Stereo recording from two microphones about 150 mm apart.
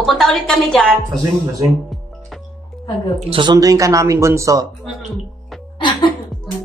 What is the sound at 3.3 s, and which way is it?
Speech, 30° right (ahead or behind).